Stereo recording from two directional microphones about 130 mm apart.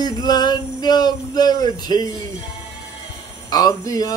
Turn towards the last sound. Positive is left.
turn(degrees=30)  # may be behind; listen again after turning